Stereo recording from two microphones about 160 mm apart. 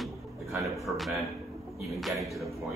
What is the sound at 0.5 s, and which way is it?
Speech, 20° right (ahead or behind).